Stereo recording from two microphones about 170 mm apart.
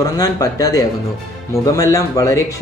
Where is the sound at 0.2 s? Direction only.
20° left (ahead or behind).